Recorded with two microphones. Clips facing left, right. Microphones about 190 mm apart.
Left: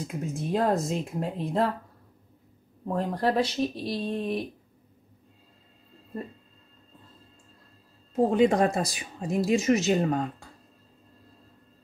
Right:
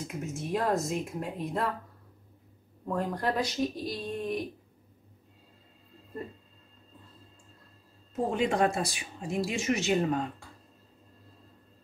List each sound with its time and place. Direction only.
0.0 s speech: 35° left (ahead or behind)
2.9 s speech: 30° left (ahead or behind)
8.1 s speech: 35° left (ahead or behind)